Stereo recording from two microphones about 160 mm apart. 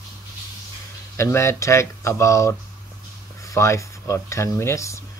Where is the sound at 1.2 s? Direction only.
15° left (ahead or behind).